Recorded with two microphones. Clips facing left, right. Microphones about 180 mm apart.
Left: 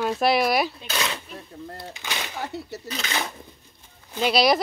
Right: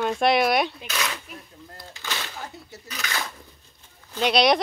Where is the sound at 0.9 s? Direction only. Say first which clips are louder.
Left 2 dB; 30° left (ahead or behind).